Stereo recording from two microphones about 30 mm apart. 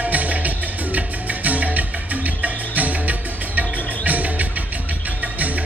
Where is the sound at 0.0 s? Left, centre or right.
Right.